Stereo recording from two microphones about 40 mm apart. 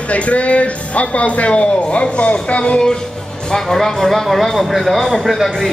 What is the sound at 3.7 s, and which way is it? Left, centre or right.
Speech, centre.